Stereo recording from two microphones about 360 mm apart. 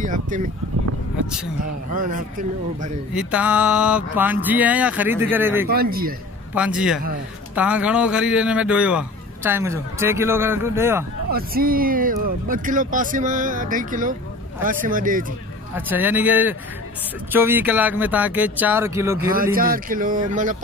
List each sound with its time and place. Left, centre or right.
0.0 s speech: right
2.0 s speech: right
3.2 s speech: centre
5.7 s speech: right
6.5 s speech: centre
11.3 s speech: right
15.7 s speech: centre
19.3 s speech: right